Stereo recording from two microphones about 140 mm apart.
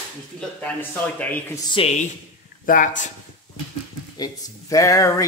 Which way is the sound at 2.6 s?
70° left (ahead or behind).